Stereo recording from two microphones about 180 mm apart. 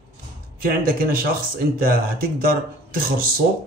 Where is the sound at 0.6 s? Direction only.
55° right (ahead or behind).